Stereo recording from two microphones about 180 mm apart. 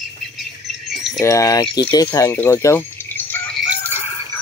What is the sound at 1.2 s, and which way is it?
Speech, 20° left (ahead or behind).